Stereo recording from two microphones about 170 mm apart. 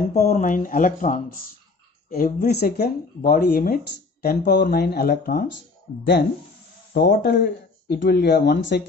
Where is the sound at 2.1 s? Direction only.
60° left (ahead or behind).